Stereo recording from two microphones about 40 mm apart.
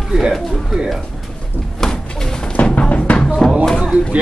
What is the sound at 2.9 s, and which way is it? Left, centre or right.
Music, left.